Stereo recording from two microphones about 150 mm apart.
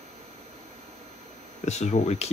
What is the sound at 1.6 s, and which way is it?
Speech, 50° left (ahead or behind).